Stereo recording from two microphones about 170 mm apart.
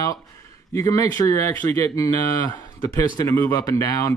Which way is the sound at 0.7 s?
20° left (ahead or behind).